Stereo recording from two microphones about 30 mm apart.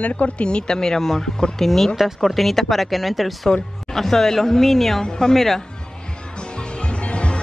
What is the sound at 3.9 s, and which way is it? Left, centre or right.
Speech, centre.